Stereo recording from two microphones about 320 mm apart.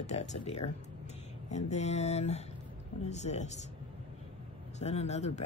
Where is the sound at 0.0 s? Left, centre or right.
Left.